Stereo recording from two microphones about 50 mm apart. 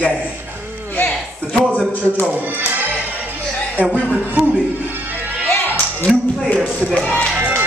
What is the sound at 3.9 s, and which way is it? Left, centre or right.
Speech, right.